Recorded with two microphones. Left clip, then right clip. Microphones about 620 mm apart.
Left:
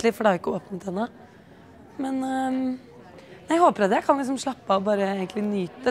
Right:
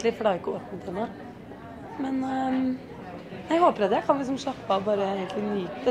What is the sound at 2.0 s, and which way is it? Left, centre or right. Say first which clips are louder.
Speech: left 2 dB; left.